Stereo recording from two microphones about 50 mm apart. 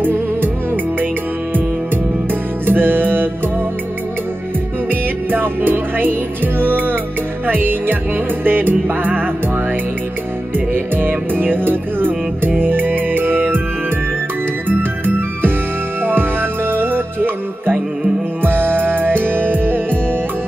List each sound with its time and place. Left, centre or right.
0.0 s music: right
2.6 s music: right
5.3 s music: right
10.7 s music: right
16.1 s music: right